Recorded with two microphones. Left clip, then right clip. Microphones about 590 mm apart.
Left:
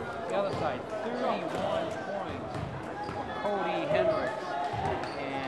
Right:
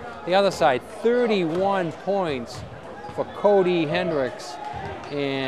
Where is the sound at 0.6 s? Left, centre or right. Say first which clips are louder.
Right 13 dB; right.